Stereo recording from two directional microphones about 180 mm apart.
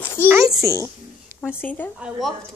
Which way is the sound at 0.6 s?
15° right (ahead or behind).